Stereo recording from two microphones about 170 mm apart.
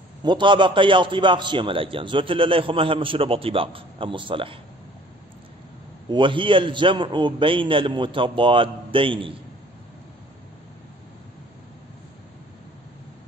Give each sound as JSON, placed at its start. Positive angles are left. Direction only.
{"t": 0.2, "sound": "a man's voice", "side_deg": -25}
{"t": 6.0, "sound": "a man's voice", "side_deg": -30}